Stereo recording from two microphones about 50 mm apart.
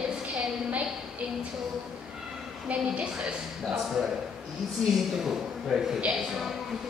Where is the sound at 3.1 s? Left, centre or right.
Centre.